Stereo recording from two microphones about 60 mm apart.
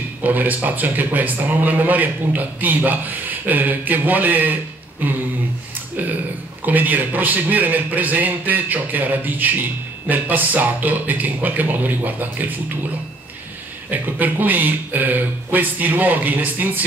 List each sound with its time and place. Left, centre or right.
0.2 s a man's voice: right
6.6 s a man's voice: right
13.8 s a man's voice: right